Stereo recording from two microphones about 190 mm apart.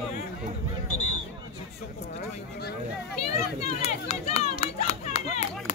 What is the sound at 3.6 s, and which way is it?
Run, 35° left (ahead or behind).